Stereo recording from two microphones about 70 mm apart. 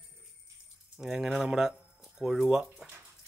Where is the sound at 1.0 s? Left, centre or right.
Centre.